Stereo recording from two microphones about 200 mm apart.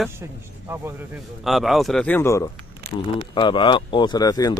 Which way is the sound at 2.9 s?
25° left (ahead or behind).